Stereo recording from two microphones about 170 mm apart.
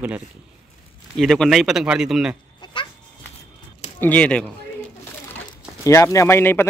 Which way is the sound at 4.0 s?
10° left (ahead or behind).